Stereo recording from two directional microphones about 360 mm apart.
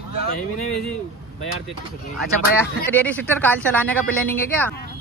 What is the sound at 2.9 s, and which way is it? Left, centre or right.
Speech, centre.